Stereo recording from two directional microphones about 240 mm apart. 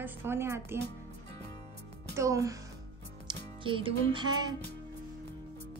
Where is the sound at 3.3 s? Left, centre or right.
Right.